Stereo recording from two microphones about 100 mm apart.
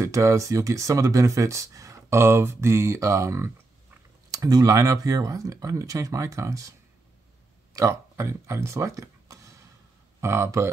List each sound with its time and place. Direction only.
0.0 s speech: 30° right (ahead or behind)
4.3 s speech: 40° right (ahead or behind)
7.7 s speech: 30° right (ahead or behind)